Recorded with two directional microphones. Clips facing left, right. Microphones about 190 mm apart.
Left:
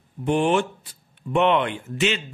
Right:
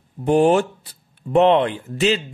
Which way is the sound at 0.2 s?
35° right (ahead or behind).